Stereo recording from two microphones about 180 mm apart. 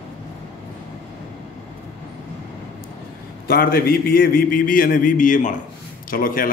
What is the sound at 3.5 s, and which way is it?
A man's voice, 60° left (ahead or behind).